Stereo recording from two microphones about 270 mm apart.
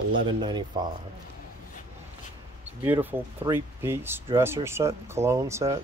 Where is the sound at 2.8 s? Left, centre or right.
Centre.